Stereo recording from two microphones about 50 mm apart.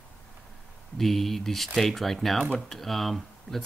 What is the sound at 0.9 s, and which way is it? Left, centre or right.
Speech, centre.